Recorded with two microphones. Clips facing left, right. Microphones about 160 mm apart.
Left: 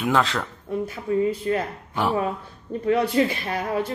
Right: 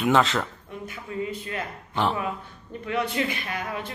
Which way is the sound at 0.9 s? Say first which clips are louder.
Left 8 dB; 35° left (ahead or behind).